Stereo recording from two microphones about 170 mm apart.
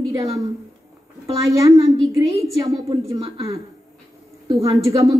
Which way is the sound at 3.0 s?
20° right (ahead or behind).